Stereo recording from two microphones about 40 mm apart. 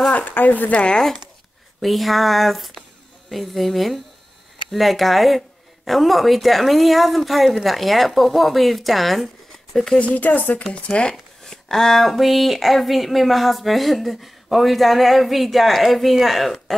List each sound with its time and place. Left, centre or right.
0.1 s a woman's voice: left
0.7 s speech: left
0.9 s speech: centre
9.9 s speech: left
10.7 s speech: left; by 16.5 s centre